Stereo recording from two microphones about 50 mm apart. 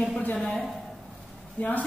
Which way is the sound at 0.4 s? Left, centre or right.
Centre.